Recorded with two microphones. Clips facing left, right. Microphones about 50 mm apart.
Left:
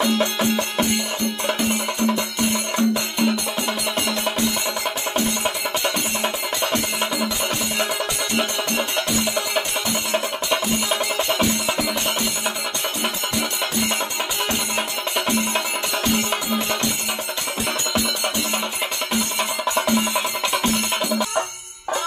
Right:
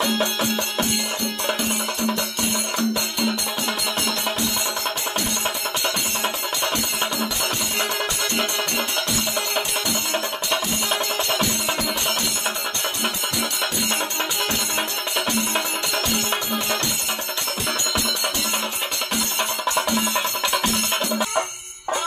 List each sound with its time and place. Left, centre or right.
0.2 s music: centre
8.4 s music: centre
16.0 s music: centre
19.6 s music: centre